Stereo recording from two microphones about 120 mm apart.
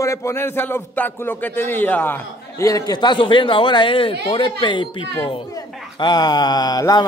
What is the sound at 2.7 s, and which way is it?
A man's voice, 30° left (ahead or behind).